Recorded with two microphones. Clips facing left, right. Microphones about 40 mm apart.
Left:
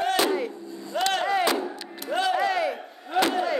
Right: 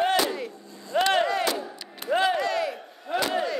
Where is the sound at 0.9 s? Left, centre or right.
Right.